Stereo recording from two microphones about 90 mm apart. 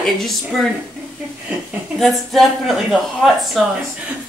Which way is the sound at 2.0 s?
Centre (ahead or behind).